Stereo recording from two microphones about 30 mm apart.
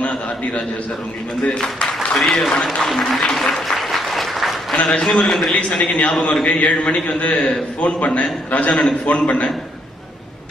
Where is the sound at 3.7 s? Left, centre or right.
Centre.